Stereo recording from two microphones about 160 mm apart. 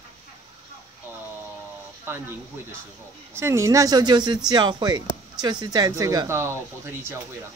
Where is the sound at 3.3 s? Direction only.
15° right (ahead or behind).